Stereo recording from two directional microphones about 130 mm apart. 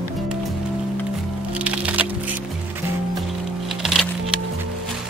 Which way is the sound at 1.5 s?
10° right (ahead or behind).